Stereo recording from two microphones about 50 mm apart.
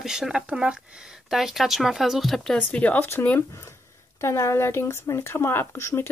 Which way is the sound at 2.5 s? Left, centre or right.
Left.